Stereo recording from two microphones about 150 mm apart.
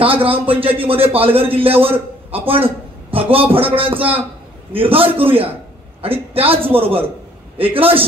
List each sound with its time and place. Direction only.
0.0 s speech: 35° right (ahead or behind)